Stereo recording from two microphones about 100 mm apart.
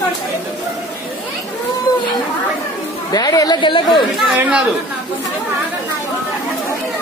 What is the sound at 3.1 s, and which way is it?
Speech, 40° left (ahead or behind).